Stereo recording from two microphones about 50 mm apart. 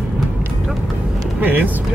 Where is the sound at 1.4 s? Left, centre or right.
Right.